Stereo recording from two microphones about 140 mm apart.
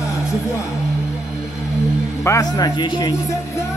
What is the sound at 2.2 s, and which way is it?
Speech, 25° left (ahead or behind).